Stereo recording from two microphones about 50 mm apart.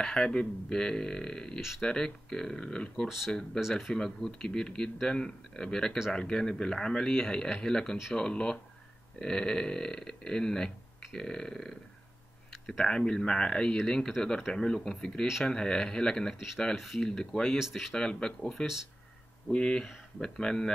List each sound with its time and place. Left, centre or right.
0.0 s speech: centre
3.9 s speech: centre
16.7 s speech: centre
17.0 s speech: centre
17.6 s speech: centre
17.9 s speech: centre